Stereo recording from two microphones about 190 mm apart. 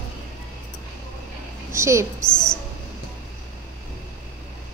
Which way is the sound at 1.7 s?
15° right (ahead or behind).